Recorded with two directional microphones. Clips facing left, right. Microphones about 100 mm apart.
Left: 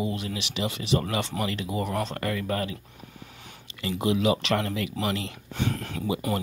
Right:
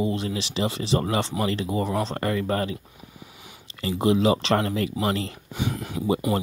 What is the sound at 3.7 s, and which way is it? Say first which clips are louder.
Speech: right 4 dB; 35° right (ahead or behind).